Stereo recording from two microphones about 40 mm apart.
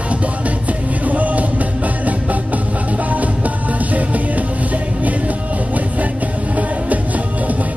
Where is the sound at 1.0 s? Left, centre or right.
Right.